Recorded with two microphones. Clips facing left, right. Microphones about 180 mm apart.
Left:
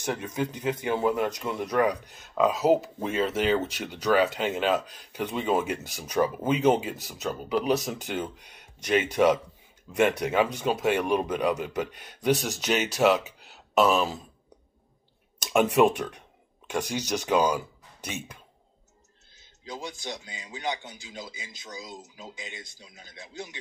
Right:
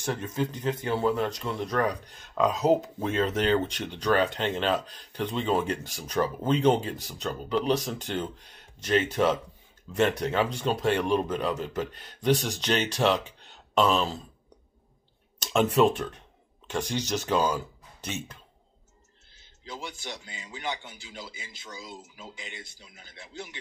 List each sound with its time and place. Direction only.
0.0 s a man's voice: 10° left (ahead or behind)
15.3 s speech: 10° left (ahead or behind)
19.6 s speech: 20° left (ahead or behind)